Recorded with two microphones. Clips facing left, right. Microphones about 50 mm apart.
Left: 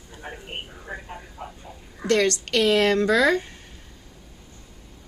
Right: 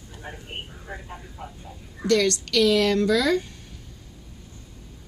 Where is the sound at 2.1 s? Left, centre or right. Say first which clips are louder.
Even; left.